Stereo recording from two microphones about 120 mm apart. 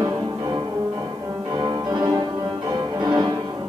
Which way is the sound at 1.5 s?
40° right (ahead or behind).